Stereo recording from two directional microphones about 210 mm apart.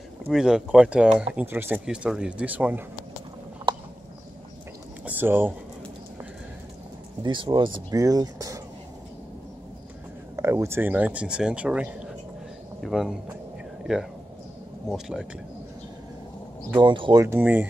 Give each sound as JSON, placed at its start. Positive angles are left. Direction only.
{"t": 0.3, "sound": "speech", "side_deg": 0}
{"t": 5.0, "sound": "a sound", "side_deg": -10}
{"t": 7.2, "sound": "speech", "side_deg": -20}
{"t": 10.3, "sound": "speech", "side_deg": -15}
{"t": 14.9, "sound": "speech", "side_deg": 0}
{"t": 16.7, "sound": "speech", "side_deg": -25}
{"t": 17.2, "sound": "speech", "side_deg": -10}